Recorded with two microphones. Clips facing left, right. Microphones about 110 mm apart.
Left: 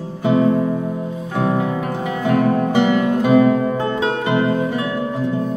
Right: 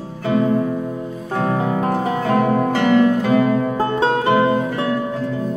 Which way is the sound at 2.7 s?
15° left (ahead or behind).